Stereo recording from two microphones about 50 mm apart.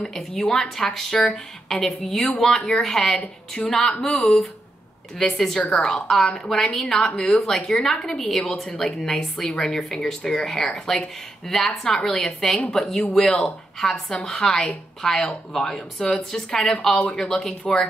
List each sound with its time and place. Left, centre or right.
0.0 s a woman's voice: centre
3.2 s a woman's voice: left